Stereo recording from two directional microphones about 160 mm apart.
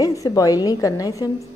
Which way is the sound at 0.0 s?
20° left (ahead or behind).